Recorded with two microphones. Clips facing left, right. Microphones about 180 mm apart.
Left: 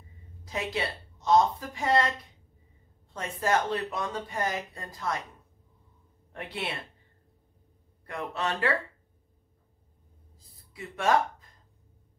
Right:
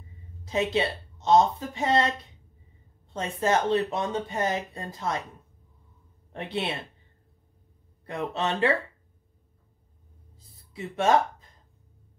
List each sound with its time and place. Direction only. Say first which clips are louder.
0.5 s speech: right 6 dB; 25° right (ahead or behind)
6.3 s speech: right 5 dB; 25° right (ahead or behind)
8.1 s speech: right 3 dB; 25° right (ahead or behind)
10.3 s music: right 8 dB; 25° right (ahead or behind)